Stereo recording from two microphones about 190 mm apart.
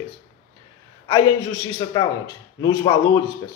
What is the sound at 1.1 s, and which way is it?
A man's voice, 20° left (ahead or behind).